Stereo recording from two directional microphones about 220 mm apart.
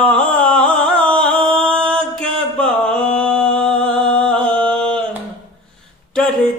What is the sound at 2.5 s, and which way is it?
Mantra, 5° left (ahead or behind).